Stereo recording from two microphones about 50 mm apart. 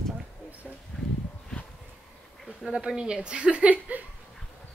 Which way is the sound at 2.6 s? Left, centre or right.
Centre.